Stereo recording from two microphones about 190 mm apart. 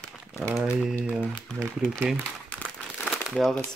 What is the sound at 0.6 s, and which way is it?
Speech, centre (ahead or behind).